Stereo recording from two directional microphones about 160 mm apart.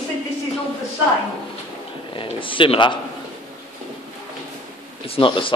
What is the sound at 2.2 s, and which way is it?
Speech, 30° left (ahead or behind).